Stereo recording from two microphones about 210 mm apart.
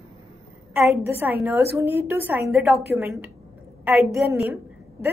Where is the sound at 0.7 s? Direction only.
10° right (ahead or behind).